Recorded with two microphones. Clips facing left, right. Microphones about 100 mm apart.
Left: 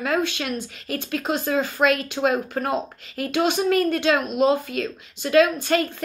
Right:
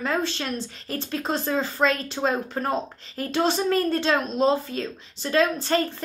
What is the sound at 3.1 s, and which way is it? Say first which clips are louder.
A woman's voice: left 2 dB; 35° right (ahead or behind).